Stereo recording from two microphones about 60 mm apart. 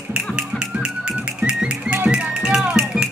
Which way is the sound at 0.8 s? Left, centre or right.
Centre.